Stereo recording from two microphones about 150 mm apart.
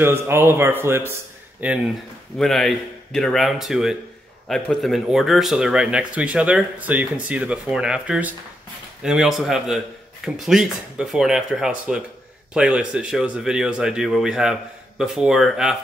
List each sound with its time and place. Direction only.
0.0 s speech: 15° right (ahead or behind)
2.3 s speech: centre (ahead or behind)